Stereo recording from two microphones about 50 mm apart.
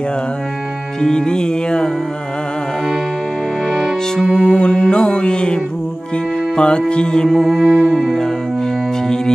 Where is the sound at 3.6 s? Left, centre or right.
Centre.